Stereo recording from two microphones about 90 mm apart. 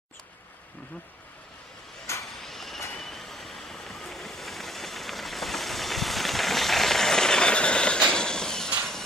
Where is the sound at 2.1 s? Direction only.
30° left (ahead or behind).